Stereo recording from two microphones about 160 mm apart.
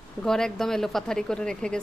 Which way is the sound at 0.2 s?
5° left (ahead or behind).